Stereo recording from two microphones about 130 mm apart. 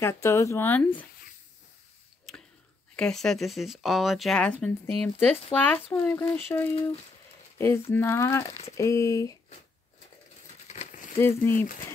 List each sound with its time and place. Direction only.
0.0 s speech: 20° left (ahead or behind)
2.3 s a sound: 5° left (ahead or behind)
3.0 s speech: 5° left (ahead or behind); by 9.3 s 25° left (ahead or behind)
11.1 s speech: 20° left (ahead or behind)